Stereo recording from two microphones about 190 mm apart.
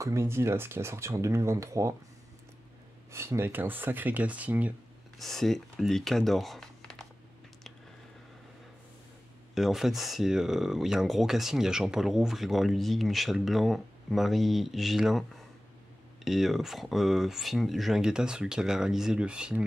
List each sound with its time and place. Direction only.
0.0 s speech: 15° right (ahead or behind)
3.1 s speech: 15° right (ahead or behind); by 7.1 s 5° left (ahead or behind)
9.6 s speech: centre (ahead or behind)
16.3 s speech: centre (ahead or behind)